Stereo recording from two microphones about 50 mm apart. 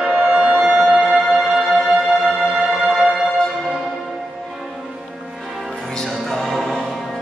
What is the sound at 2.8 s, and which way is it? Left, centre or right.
Music, centre.